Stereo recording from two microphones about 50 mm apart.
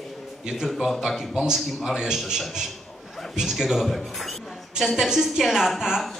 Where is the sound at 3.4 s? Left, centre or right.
Centre.